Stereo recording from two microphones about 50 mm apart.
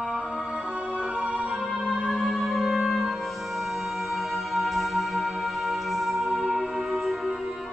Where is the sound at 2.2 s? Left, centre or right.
Centre.